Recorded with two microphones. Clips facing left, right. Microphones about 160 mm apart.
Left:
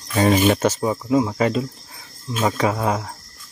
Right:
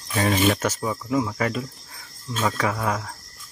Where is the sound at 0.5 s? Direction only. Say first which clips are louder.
Left 6 dB; 25° left (ahead or behind).